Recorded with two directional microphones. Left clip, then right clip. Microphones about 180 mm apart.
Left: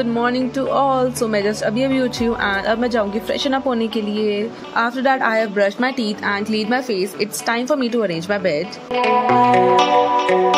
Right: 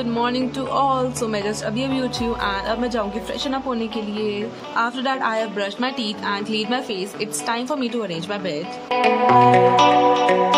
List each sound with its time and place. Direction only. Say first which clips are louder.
0.0 s speech: left 3 dB; 15° left (ahead or behind)
9.0 s music: even; centre (ahead or behind)